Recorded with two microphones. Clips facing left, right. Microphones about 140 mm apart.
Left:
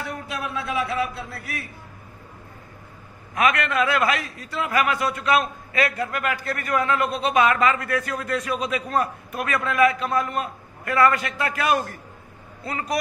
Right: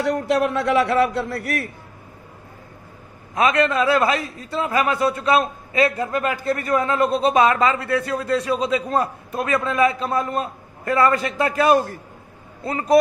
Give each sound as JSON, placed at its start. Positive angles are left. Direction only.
{"t": 0.0, "sound": "a man's voice", "side_deg": -80}
{"t": 3.3, "sound": "a man's voice", "side_deg": -30}